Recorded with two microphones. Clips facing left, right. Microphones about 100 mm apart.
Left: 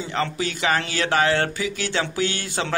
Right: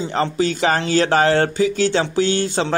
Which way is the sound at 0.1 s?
35° right (ahead or behind).